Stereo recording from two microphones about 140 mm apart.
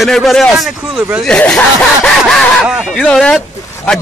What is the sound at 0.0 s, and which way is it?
A man's voice, centre (ahead or behind).